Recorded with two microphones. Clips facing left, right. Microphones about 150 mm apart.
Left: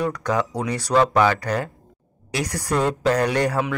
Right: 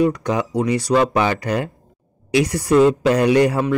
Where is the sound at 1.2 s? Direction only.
20° right (ahead or behind).